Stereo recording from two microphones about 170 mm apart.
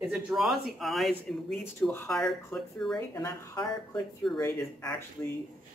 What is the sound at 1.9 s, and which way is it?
Speech, 15° left (ahead or behind).